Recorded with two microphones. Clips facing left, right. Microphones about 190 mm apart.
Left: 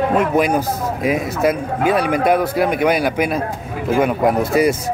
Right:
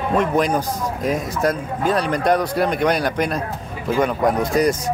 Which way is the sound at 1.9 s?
5° left (ahead or behind).